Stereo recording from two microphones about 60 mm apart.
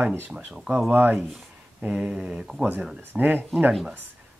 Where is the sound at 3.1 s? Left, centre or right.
Right.